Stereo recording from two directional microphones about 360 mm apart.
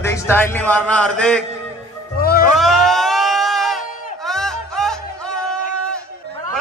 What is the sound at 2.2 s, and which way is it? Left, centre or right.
Music, left.